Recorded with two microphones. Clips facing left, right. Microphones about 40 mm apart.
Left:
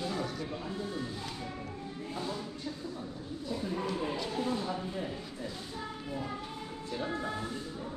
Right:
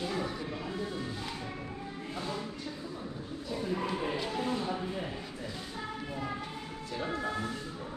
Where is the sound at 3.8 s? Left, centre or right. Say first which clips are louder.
Right 1 dB; right.